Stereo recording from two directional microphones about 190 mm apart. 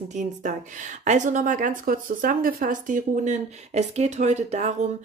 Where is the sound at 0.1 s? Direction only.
40° right (ahead or behind).